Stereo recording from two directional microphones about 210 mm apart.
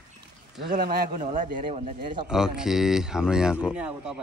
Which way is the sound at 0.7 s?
40° right (ahead or behind).